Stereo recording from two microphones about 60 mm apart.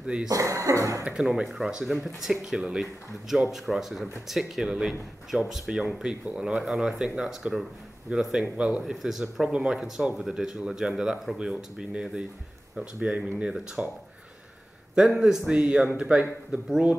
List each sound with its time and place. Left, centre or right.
0.0 s speech: centre
0.3 s speech: right
1.2 s speech: centre
6.2 s speech: centre
6.6 s speech: centre
8.8 s speech: centre
15.0 s speech: centre